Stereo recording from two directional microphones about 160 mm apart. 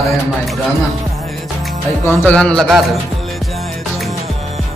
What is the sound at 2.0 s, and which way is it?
Music, 10° left (ahead or behind).